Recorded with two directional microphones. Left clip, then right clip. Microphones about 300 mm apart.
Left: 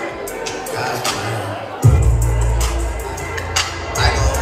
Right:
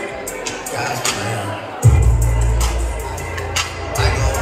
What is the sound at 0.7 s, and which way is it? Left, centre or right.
Music, left.